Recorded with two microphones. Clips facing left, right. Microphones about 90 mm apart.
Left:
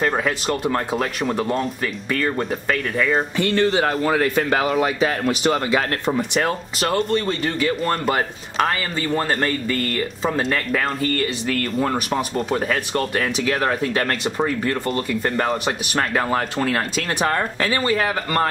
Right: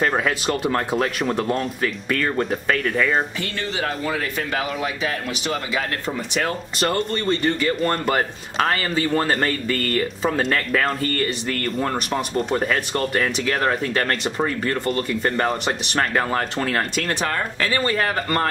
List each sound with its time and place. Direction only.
0.0 s speech: centre (ahead or behind)
3.5 s speech: 40° left (ahead or behind)
4.2 s speech: 50° left (ahead or behind)
4.6 s speech: 40° left (ahead or behind)
6.0 s speech: 15° left (ahead or behind)
6.9 s speech: 5° left (ahead or behind); by 17.7 s 20° left (ahead or behind)
17.7 s speech: 10° left (ahead or behind)